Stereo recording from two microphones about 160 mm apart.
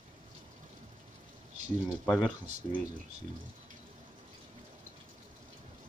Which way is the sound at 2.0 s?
5° left (ahead or behind).